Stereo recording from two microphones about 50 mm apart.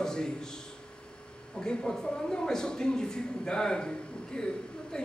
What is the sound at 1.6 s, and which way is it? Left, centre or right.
Speech, centre.